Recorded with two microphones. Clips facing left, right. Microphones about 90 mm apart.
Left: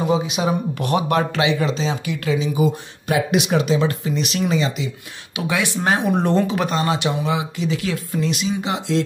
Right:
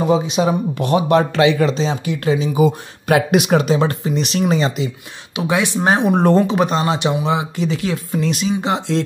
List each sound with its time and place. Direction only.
0.3 s speech: 30° right (ahead or behind)
2.5 s speech: 70° right (ahead or behind); by 4.8 s 40° right (ahead or behind)
5.3 s speech: 25° right (ahead or behind)
6.1 s speech: 40° right (ahead or behind)
6.5 s speech: 25° right (ahead or behind)